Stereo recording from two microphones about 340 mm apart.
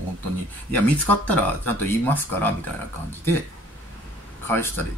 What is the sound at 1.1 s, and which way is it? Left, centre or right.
Speech, centre.